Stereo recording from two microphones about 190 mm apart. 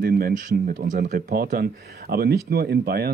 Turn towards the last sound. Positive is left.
turn(degrees=-55)  # may be behind; listen again after turning